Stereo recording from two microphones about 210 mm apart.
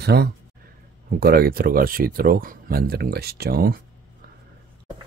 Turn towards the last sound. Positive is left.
turn(degrees=-45)  # may be behind; listen again after turning